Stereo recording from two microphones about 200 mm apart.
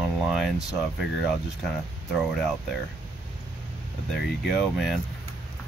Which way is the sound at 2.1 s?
Centre (ahead or behind).